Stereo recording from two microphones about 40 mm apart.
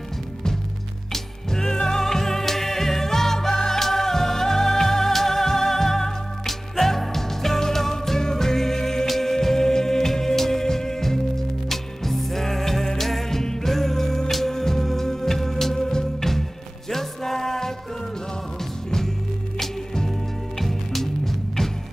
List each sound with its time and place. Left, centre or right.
1.1 s music: centre
19.6 s music: centre